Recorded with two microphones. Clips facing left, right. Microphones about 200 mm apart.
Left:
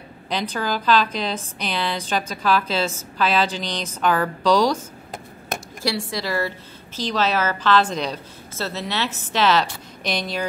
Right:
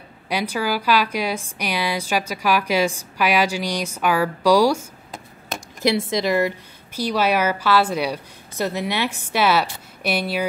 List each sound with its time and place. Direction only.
0.3 s a woman's voice: 10° right (ahead or behind)